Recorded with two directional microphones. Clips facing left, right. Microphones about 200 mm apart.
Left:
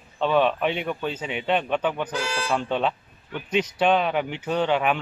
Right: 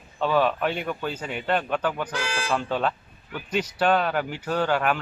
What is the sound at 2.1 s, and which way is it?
Speech, 5° left (ahead or behind).